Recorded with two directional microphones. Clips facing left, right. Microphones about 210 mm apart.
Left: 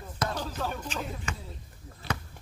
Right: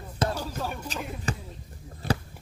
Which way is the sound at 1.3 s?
35° right (ahead or behind).